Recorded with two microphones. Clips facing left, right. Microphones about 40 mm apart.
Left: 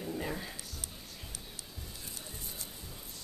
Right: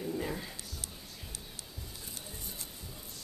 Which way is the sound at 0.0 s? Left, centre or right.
Centre.